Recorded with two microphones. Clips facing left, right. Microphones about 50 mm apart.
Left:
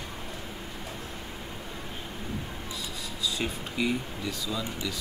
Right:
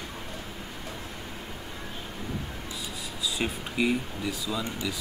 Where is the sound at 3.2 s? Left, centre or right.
Centre.